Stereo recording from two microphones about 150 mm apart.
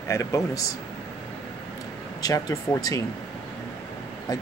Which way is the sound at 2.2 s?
25° left (ahead or behind).